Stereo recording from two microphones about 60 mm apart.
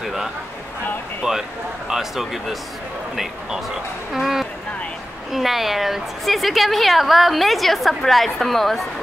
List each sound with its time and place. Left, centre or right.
0.0 s speech: centre
1.2 s speech: centre
1.9 s a woman's voice: centre
4.1 s a woman's voice: centre